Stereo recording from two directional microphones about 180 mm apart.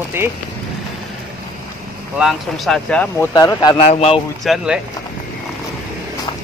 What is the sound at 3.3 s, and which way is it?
Speech, 20° left (ahead or behind).